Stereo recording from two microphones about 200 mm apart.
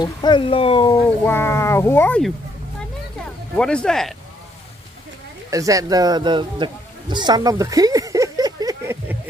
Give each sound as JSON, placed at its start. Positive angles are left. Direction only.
{"t": 0.0, "sound": "speech", "side_deg": 20}
{"t": 1.0, "sound": "speech", "side_deg": 10}
{"t": 3.5, "sound": "speech", "side_deg": 5}
{"t": 5.5, "sound": "a man's voice", "side_deg": -15}